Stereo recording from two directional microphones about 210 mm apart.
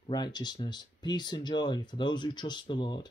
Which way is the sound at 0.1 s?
20° left (ahead or behind).